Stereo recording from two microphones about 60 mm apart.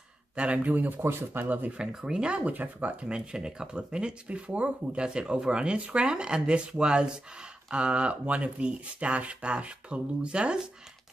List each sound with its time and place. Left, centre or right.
0.4 s speech: right
1.8 s speech: centre